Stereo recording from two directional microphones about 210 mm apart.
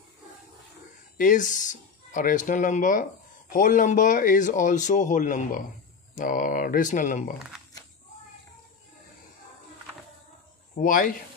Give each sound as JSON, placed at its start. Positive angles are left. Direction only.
{"t": 1.1, "sound": "speech", "side_deg": 40}
{"t": 10.8, "sound": "speech", "side_deg": 40}